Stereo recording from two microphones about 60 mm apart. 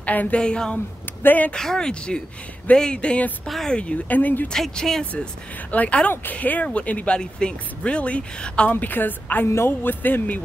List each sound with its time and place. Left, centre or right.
0.0 s a woman's voice: left
0.4 s speech: centre
1.2 s speech: left
1.5 s speech: centre
3.4 s speech: centre
3.7 s speech: centre
4.5 s speech: centre
5.1 s speech: left
8.7 s speech: left